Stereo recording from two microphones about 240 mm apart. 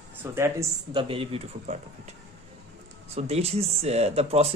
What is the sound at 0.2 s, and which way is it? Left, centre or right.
Speech, centre.